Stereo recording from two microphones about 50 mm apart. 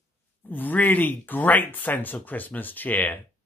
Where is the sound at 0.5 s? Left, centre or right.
Left.